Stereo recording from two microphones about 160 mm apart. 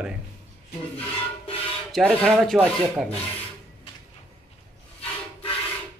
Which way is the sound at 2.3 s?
Centre (ahead or behind).